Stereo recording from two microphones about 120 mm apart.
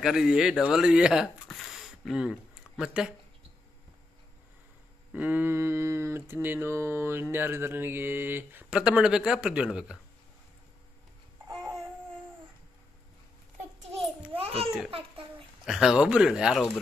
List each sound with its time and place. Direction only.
0.0 s speech: 5° right (ahead or behind)
5.1 s speech: 15° right (ahead or behind)
14.3 s children playing: 55° right (ahead or behind)
14.9 s babbling: 50° right (ahead or behind)
15.6 s speech: 5° right (ahead or behind)